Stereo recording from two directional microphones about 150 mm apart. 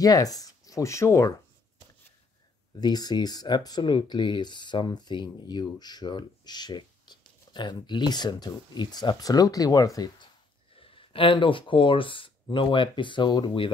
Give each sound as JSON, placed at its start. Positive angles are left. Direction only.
{"t": 0.0, "sound": "speech", "side_deg": 25}
{"t": 2.7, "sound": "speech", "side_deg": 25}
{"t": 10.8, "sound": "speech", "side_deg": 35}